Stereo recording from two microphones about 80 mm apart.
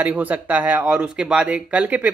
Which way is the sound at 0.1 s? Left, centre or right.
Centre.